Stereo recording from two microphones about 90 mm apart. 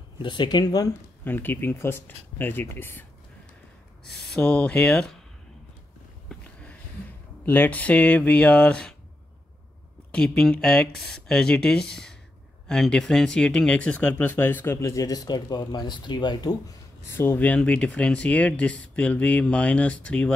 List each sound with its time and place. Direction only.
0.2 s speech: 55° left (ahead or behind)
1.2 s speech: 20° left (ahead or behind)
4.4 s speech: 15° left (ahead or behind)
6.2 s a sound: 15° left (ahead or behind)
7.4 s speech: 20° left (ahead or behind)
10.1 s speech: 10° left (ahead or behind); by 16.5 s 50° left (ahead or behind)
17.2 s speech: 20° left (ahead or behind)